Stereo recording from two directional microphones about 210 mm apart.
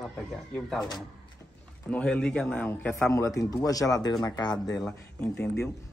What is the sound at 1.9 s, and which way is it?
Speech, 5° left (ahead or behind).